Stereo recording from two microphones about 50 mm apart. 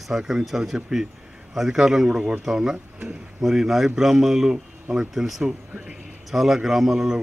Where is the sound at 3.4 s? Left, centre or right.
Centre.